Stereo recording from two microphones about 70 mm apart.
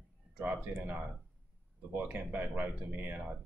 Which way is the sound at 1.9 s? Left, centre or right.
Right.